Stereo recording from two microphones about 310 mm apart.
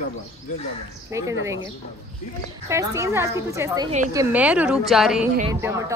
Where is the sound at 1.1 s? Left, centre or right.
Centre.